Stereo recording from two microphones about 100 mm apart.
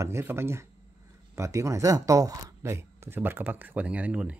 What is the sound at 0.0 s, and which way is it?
Speech, 25° right (ahead or behind).